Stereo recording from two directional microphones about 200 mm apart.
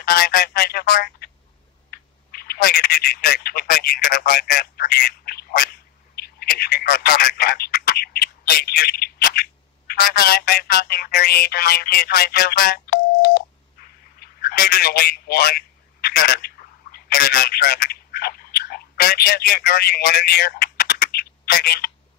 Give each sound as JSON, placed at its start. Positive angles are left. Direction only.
{"t": 0.0, "sound": "speech", "side_deg": 50}
{"t": 14.2, "sound": "telephone", "side_deg": 50}